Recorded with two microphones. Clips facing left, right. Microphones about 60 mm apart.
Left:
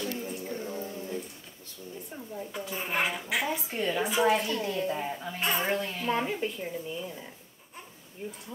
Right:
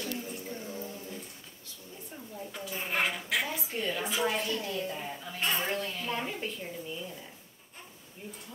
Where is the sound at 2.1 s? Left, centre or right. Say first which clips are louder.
Left 4 dB; centre.